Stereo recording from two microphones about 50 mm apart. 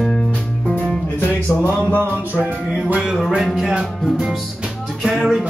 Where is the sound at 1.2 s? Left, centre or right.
Left.